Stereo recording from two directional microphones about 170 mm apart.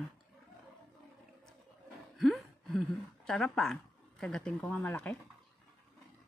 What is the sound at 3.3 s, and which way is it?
Speech, 5° left (ahead or behind).